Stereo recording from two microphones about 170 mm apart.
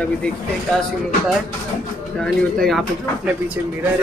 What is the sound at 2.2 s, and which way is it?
Speech, 5° left (ahead or behind).